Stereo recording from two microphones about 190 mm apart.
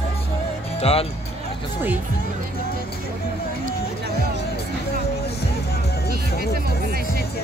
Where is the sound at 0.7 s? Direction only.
30° left (ahead or behind).